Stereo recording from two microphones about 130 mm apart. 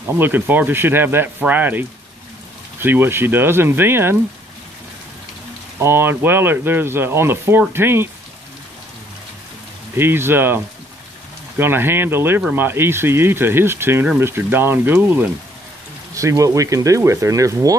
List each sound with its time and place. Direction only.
0.2 s speech: 15° right (ahead or behind)
5.8 s speech: 20° right (ahead or behind)
9.9 s speech: 15° right (ahead or behind)